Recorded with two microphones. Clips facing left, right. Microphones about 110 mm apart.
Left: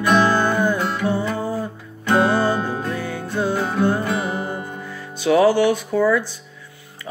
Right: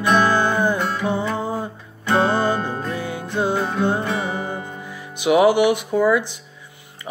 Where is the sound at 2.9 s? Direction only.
15° right (ahead or behind).